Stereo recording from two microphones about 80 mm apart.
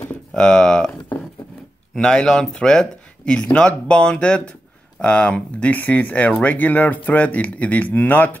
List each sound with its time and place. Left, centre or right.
0.3 s speech: centre
2.0 s speech: centre